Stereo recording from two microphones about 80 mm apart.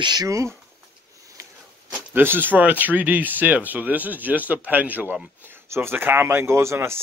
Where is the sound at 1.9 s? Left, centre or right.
Right.